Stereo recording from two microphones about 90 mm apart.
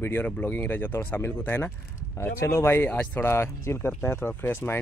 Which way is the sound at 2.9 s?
15° left (ahead or behind).